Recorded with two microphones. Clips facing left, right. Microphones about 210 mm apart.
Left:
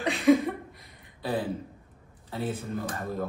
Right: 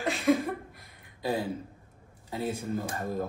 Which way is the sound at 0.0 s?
Centre (ahead or behind).